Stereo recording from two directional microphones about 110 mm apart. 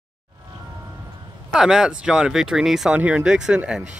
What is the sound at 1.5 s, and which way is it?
Speech, 5° right (ahead or behind).